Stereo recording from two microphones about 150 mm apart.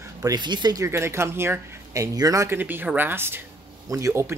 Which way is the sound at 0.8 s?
15° right (ahead or behind).